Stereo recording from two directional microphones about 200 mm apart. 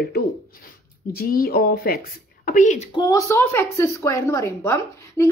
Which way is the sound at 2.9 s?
15° left (ahead or behind).